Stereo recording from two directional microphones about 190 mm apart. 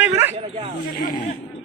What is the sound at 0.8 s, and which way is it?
Speech, 50° left (ahead or behind).